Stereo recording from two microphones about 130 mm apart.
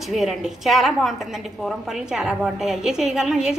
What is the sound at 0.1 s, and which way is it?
A woman's voice, centre (ahead or behind).